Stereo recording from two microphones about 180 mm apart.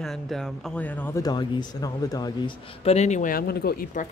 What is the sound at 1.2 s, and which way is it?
Speech, 25° left (ahead or behind).